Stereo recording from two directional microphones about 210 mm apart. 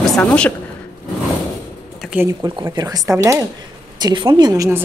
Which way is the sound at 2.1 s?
15° right (ahead or behind).